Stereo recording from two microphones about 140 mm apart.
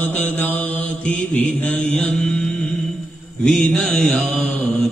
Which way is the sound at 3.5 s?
5° left (ahead or behind).